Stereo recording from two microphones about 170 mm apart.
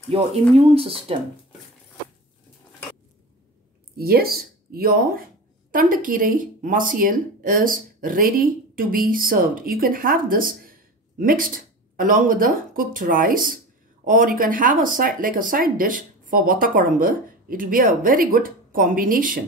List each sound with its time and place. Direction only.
0.1 s speech: 35° right (ahead or behind)
3.9 s speech: 65° right (ahead or behind)